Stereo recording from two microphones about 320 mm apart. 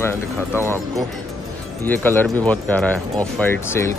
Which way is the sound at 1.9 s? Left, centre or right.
Centre.